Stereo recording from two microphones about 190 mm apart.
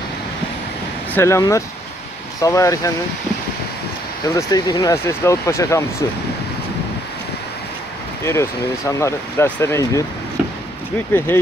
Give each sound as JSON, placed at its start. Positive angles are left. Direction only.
{"t": 1.1, "sound": "speech", "side_deg": 15}
{"t": 4.4, "sound": "speech", "side_deg": 20}
{"t": 8.3, "sound": "speech", "side_deg": 15}
{"t": 11.1, "sound": "speech", "side_deg": 10}